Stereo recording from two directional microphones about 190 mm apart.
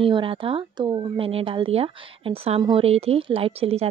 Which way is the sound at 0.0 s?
30° right (ahead or behind).